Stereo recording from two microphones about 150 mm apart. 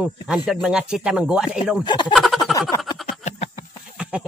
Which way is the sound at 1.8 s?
30° left (ahead or behind).